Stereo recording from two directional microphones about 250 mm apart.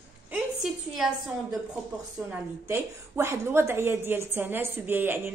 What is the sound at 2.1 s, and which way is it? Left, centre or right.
A woman's voice, centre.